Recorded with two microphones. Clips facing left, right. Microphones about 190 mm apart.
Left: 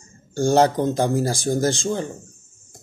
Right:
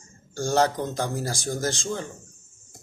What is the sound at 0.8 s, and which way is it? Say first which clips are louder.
Speech: left 8 dB; 30° left (ahead or behind).